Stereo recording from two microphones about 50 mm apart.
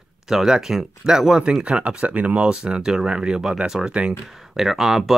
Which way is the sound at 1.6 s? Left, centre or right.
Right.